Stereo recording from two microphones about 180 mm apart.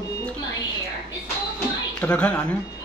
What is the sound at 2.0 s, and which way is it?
Speech, 10° left (ahead or behind).